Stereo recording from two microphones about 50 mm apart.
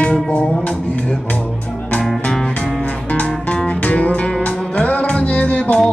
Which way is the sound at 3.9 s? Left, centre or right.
Left.